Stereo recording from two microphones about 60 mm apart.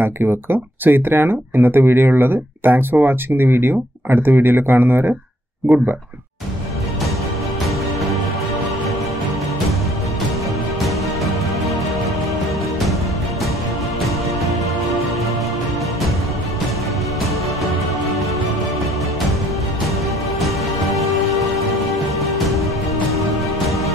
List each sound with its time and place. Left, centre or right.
0.0 s speech: right
20.3 s music: centre